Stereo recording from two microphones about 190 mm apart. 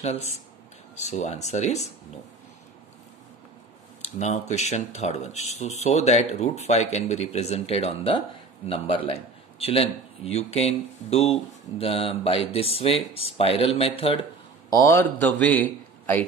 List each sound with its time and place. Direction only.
0.0 s speech: 35° left (ahead or behind)
4.0 s speech: 35° left (ahead or behind)
14.7 s a man's voice: 15° left (ahead or behind)